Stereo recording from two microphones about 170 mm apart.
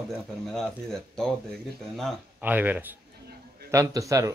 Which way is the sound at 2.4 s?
10° right (ahead or behind).